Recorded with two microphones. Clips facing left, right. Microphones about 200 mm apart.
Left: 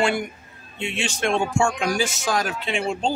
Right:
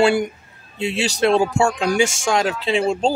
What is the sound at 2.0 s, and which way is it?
Speech, 25° right (ahead or behind).